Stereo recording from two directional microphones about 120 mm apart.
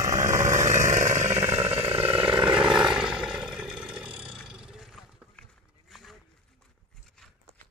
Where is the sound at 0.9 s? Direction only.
85° right.